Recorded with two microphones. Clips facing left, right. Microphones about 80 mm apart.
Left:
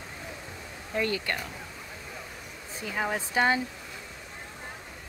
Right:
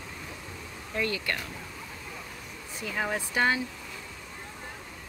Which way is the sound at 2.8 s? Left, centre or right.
Left.